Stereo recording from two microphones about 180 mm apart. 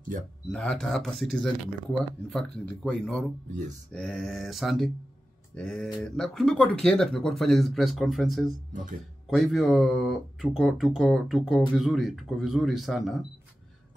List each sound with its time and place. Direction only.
0.5 s speech: 5° left (ahead or behind)